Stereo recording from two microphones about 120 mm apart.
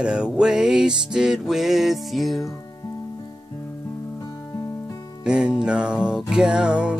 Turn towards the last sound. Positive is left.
turn(degrees=-10)  # may be behind; listen again after turning